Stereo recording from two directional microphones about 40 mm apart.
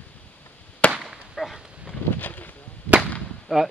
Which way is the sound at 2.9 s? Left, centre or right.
Left.